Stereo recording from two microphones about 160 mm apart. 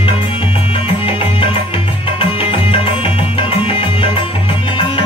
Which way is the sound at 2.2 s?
35° left (ahead or behind).